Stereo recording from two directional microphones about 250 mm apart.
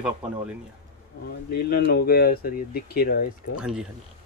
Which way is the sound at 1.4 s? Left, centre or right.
Left.